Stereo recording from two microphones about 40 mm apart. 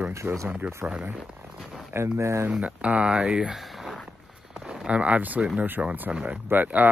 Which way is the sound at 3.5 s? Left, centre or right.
Centre.